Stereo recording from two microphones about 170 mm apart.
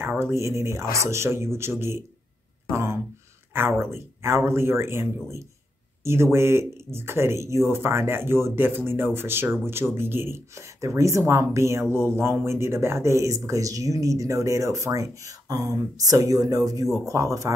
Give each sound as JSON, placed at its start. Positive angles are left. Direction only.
{"t": 0.0, "sound": "speech", "side_deg": -15}